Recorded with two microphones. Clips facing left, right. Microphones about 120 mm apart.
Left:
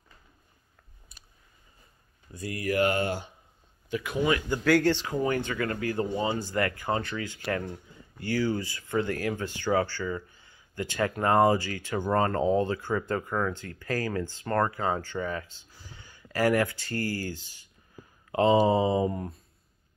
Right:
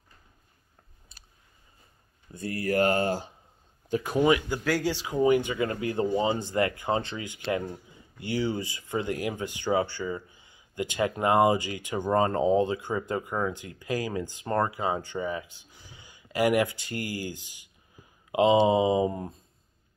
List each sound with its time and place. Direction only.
2.3 s speech: 30° right (ahead or behind)
4.5 s speech: 5° right (ahead or behind)